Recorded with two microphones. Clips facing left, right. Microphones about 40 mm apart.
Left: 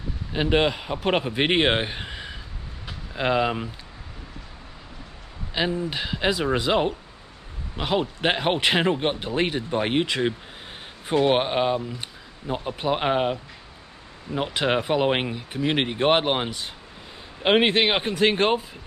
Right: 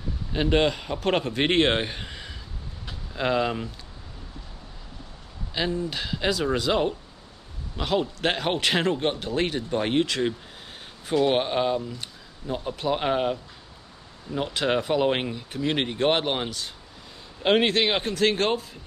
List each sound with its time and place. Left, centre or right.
0.3 s a man's voice: centre
5.5 s speech: centre